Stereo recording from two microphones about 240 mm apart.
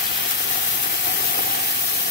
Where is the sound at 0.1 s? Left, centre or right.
Left.